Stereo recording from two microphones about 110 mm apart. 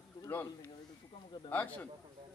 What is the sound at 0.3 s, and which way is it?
A man's voice, 20° left (ahead or behind).